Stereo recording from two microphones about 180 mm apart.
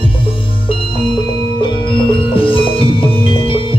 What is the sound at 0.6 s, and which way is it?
Music, 30° left (ahead or behind).